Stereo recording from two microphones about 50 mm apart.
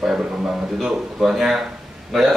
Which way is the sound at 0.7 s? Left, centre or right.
Centre.